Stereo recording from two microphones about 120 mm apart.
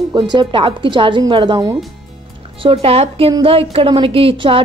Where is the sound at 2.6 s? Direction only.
55° right (ahead or behind).